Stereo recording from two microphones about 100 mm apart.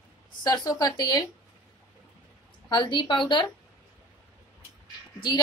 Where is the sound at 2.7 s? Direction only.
50° left (ahead or behind).